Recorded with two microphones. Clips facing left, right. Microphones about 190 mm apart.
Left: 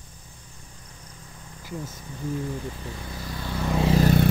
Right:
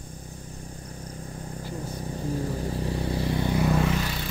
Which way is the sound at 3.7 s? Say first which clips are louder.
Left 3 dB; 30° left (ahead or behind).